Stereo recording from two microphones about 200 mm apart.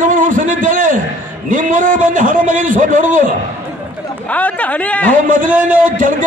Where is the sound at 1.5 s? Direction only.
40° right (ahead or behind).